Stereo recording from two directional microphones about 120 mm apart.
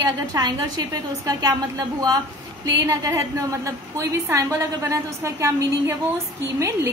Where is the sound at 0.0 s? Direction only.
35° right (ahead or behind).